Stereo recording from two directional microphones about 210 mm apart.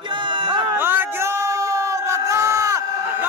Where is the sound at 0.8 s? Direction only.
10° right (ahead or behind).